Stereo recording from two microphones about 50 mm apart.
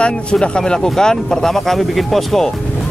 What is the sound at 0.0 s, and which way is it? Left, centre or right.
Speech, centre.